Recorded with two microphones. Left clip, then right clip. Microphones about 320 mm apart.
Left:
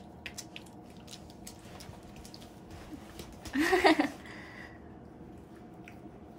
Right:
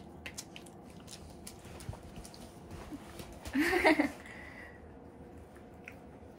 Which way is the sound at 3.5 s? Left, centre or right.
Centre.